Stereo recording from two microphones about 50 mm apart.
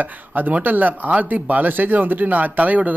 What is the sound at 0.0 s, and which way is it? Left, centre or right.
Speech, right.